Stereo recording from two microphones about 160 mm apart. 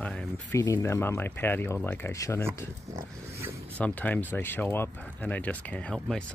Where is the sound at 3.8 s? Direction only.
10° left (ahead or behind).